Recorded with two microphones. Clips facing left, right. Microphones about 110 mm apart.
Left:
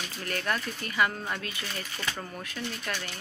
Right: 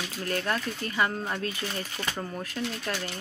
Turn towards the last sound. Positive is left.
turn(degrees=-20)  # may be behind; listen again after turning